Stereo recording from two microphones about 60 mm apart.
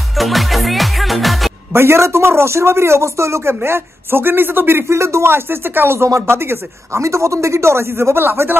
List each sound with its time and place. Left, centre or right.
0.1 s music: centre
1.7 s a man's voice: right
7.0 s a man's voice: right